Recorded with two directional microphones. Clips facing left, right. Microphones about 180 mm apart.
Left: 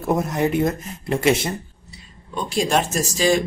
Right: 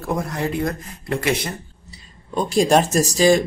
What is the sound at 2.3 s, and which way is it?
Speech, 40° right (ahead or behind).